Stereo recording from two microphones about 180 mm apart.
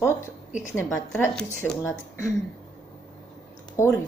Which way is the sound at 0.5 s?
45° left (ahead or behind).